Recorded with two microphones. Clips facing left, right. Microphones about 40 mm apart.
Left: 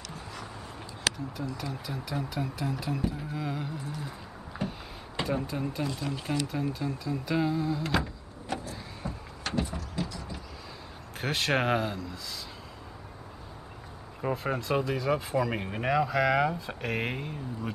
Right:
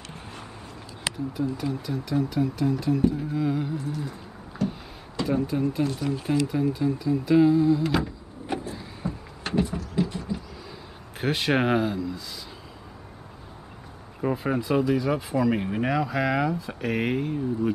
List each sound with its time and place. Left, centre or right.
1.6 s speech: centre
4.6 s a sound: left
5.2 s speech: centre
5.9 s speech: right
6.2 s speech: centre
8.5 s power windows: right
9.0 s vehicle: centre
9.4 s a sound: centre
10.1 s vehicle: right
11.1 s speech: centre
14.2 s speech: centre
16.4 s speech: centre
16.9 s speech: centre